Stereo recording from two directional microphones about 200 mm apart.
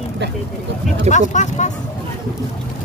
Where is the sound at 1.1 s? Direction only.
35° left (ahead or behind).